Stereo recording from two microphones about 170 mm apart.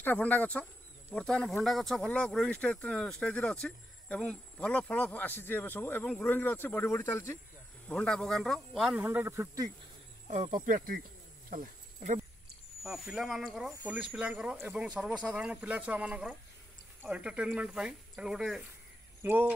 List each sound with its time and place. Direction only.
0.0 s speech: 10° left (ahead or behind)
9.0 s speech: 15° right (ahead or behind)
10.2 s speech: 40° right (ahead or behind)
11.5 s snake: 50° right (ahead or behind)
12.8 s speech: centre (ahead or behind)